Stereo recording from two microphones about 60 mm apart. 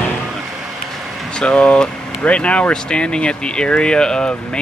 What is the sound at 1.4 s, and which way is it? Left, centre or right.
Speech, centre.